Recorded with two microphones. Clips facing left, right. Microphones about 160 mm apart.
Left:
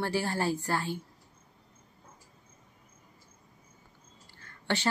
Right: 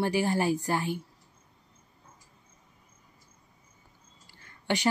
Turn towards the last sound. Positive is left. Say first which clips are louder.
# right 3 dB
turn(degrees=-15)  # may be behind; listen again after turning